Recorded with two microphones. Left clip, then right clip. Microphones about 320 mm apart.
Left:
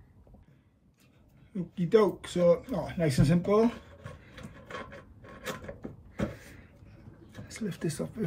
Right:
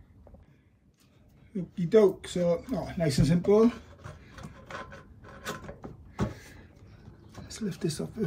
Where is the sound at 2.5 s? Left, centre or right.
Right.